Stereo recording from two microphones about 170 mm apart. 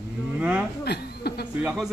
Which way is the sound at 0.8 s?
70° left (ahead or behind).